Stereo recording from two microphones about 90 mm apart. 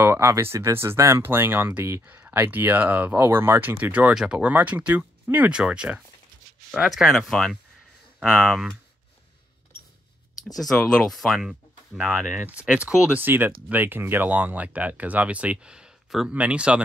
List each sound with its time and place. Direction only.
0.0 s speech: 30° right (ahead or behind)
3.8 s speech: 15° right (ahead or behind)
6.7 s speech: centre (ahead or behind)
10.6 s speech: 5° left (ahead or behind)
12.2 s speech: 20° right (ahead or behind)
12.5 s speech: 10° right (ahead or behind)
13.2 s speech: 20° right (ahead or behind)